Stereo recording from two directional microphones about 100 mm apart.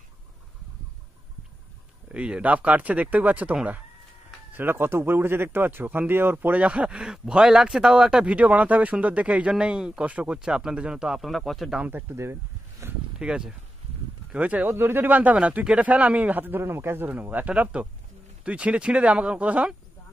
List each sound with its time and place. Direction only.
2.0 s speech: 10° right (ahead or behind)
11.8 s speech: 25° right (ahead or behind)
13.2 s speech: 10° right (ahead or behind)